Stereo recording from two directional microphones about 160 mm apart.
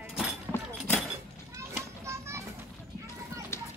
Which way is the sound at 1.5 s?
15° right (ahead or behind).